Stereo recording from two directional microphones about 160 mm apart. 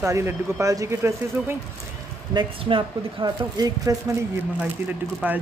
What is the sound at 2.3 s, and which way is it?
Speech, 30° right (ahead or behind).